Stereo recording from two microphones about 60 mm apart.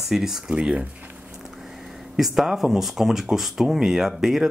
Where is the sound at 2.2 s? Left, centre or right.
Centre.